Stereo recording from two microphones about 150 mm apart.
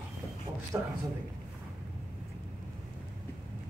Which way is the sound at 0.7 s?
15° right (ahead or behind).